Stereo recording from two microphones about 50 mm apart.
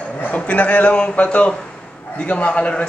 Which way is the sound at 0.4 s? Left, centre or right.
Left.